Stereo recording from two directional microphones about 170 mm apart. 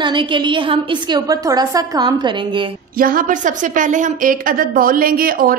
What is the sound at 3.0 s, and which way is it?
A woman's voice, 55° right (ahead or behind).